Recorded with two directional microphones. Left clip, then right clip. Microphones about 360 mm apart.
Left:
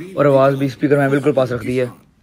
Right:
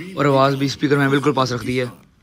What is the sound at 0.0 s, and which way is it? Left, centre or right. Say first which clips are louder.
A man's voice: left 3 dB; centre.